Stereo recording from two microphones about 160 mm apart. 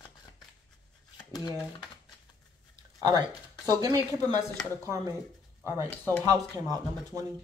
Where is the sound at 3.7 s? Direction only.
20° right (ahead or behind).